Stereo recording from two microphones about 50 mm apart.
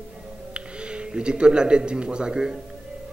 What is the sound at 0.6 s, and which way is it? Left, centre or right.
Speech, centre.